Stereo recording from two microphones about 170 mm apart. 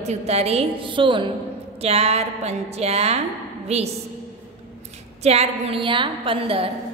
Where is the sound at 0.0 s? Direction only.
40° right (ahead or behind).